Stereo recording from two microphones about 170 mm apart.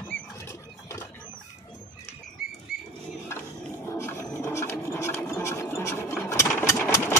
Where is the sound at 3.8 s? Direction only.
15° left (ahead or behind).